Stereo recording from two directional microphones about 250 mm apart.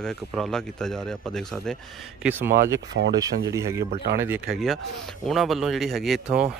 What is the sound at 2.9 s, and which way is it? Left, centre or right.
Speech, right.